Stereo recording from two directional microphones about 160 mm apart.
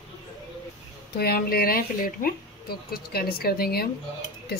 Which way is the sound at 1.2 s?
75° left (ahead or behind).